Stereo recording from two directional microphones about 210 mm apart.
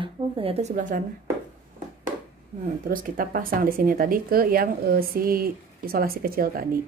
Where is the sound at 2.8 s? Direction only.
40° right (ahead or behind).